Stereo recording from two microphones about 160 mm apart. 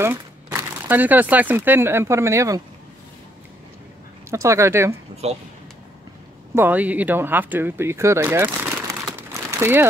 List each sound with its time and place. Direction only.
0.0 s speech: 15° right (ahead or behind)
4.3 s speech: 20° right (ahead or behind)
6.5 s speech: 10° right (ahead or behind)